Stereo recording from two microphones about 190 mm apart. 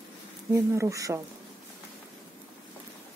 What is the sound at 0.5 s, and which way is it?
Speech, 15° right (ahead or behind).